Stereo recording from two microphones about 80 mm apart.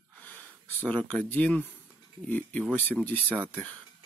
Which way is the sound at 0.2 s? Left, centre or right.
Left.